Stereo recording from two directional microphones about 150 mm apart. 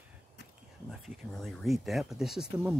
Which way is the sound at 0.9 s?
Centre (ahead or behind).